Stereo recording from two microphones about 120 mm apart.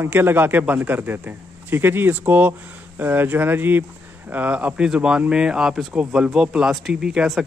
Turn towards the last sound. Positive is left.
turn(degrees=-5)  # may be behind; listen again after turning